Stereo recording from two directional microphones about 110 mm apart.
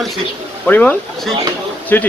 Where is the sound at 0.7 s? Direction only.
15° left (ahead or behind).